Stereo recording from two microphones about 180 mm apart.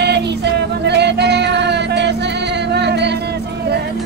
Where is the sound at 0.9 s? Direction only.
70° right (ahead or behind).